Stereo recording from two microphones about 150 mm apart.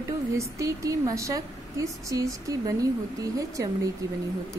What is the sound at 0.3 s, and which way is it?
A woman's voice, 20° right (ahead or behind).